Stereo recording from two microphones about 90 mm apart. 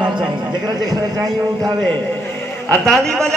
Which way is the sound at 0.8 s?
45° right (ahead or behind).